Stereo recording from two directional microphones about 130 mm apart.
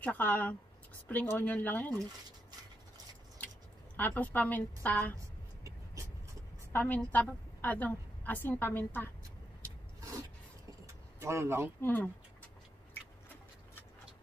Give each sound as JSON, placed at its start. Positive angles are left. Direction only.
{"t": 0.0, "sound": "a woman's voice", "side_deg": 10}
{"t": 3.9, "sound": "a woman's voice", "side_deg": 15}
{"t": 5.6, "sound": "vehicle", "side_deg": -25}
{"t": 6.7, "sound": "a woman's voice", "side_deg": 15}
{"t": 11.1, "sound": "speech", "side_deg": -20}
{"t": 11.8, "sound": "a woman's voice", "side_deg": 15}